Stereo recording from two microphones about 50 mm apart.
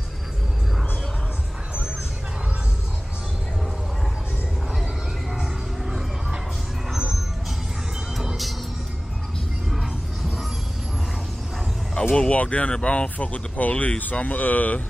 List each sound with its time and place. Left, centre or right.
5.3 s a sound: centre
6.9 s music: centre
11.9 s speech: centre; by 14.8 s left